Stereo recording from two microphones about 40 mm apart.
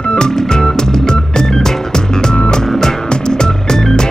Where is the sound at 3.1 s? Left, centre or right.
Centre.